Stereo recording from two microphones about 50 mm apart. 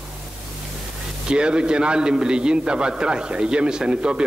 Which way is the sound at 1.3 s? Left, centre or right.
Centre.